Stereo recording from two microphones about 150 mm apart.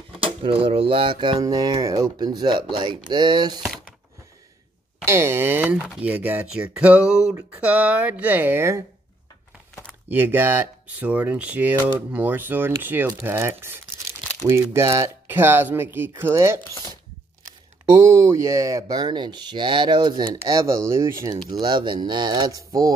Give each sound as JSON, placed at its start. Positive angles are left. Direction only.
{"t": 0.2, "sound": "speech", "side_deg": -35}
{"t": 5.0, "sound": "speech", "side_deg": -15}
{"t": 10.0, "sound": "speech", "side_deg": -15}